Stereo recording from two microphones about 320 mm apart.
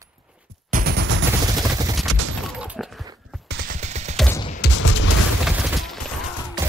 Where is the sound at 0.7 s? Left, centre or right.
Right.